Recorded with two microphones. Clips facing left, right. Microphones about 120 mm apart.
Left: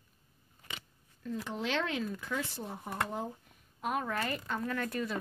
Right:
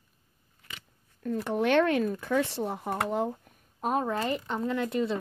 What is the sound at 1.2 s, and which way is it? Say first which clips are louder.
Speech: right 9 dB; 55° right (ahead or behind).